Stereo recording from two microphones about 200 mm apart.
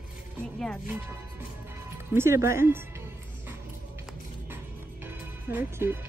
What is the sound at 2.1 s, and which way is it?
Speech, 15° right (ahead or behind).